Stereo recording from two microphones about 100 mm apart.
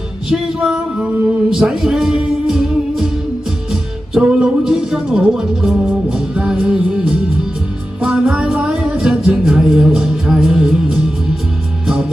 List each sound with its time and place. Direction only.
0.3 s music: 5° right (ahead or behind)
4.1 s music: 10° right (ahead or behind)